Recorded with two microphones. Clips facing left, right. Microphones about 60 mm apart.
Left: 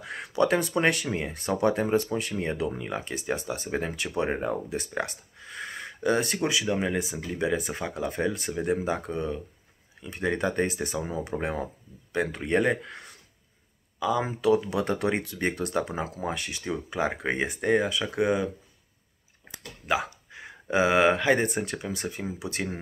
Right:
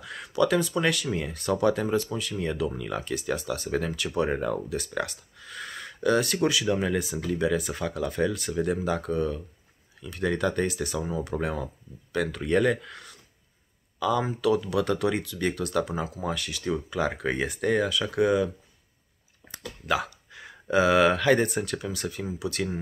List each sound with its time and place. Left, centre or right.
0.0 s a sound: left
0.4 s speech: left
13.9 s speech: centre
14.2 s speech: left
19.9 s a sound: left
20.7 s speech: left